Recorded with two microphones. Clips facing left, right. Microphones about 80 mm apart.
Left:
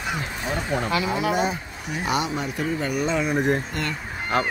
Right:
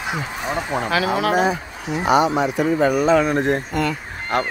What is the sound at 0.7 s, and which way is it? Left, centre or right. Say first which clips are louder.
Speech: right 5 dB; right.